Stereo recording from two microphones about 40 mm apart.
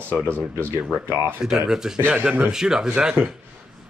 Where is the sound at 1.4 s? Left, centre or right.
Centre.